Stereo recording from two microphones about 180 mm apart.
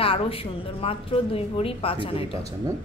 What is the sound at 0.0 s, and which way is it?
A woman's voice, 30° left (ahead or behind).